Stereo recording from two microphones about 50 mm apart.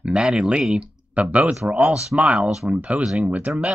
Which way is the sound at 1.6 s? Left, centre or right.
Right.